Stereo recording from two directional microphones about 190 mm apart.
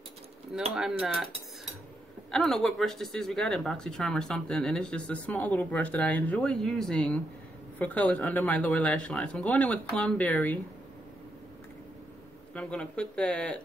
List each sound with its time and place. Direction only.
0.7 s speech: centre (ahead or behind)
2.3 s speech: centre (ahead or behind)
12.5 s speech: 5° left (ahead or behind)